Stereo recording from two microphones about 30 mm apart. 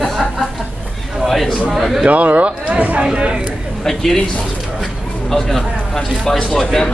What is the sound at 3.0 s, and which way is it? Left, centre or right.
Speech, right.